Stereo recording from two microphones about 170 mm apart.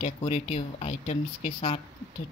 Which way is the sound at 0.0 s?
35° left (ahead or behind).